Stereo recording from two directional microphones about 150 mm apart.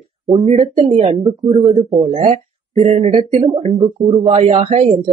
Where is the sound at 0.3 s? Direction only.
30° right (ahead or behind).